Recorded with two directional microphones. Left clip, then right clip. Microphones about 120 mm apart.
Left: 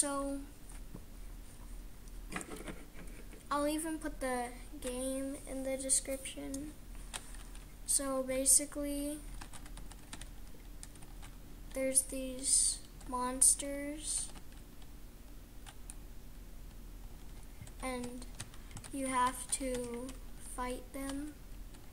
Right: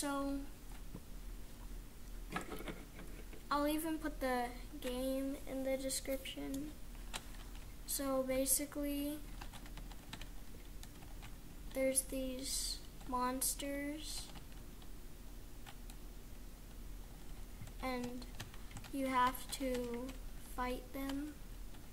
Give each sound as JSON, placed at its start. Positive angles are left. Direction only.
{"t": 0.0, "sound": "speech", "side_deg": 0}
{"t": 2.3, "sound": "a sound", "side_deg": 25}
{"t": 3.4, "sound": "speech", "side_deg": 0}
{"t": 7.8, "sound": "speech", "side_deg": 0}
{"t": 9.4, "sound": "typing", "side_deg": -10}
{"t": 11.7, "sound": "speech", "side_deg": 0}
{"t": 17.7, "sound": "a child's voice", "side_deg": 5}
{"t": 18.0, "sound": "typing", "side_deg": -15}
{"t": 18.9, "sound": "speech", "side_deg": 0}